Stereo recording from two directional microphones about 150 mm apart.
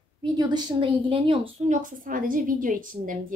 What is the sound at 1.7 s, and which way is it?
A woman's voice, 60° right (ahead or behind).